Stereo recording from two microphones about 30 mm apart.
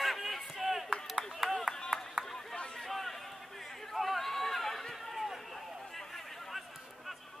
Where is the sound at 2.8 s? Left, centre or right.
Centre.